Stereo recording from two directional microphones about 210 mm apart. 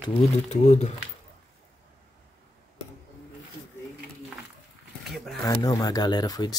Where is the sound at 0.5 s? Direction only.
35° left (ahead or behind).